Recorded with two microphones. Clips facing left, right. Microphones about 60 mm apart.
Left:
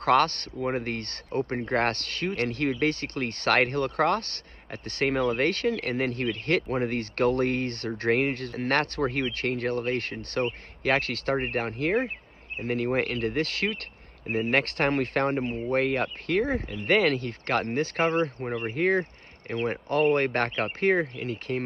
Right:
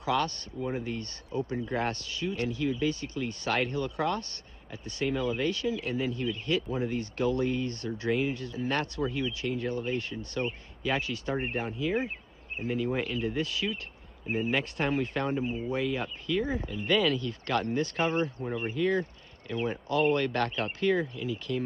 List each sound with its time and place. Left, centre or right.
0.0 s speech: left